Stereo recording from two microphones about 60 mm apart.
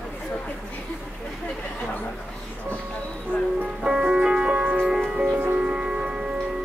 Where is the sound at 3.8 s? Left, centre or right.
Centre.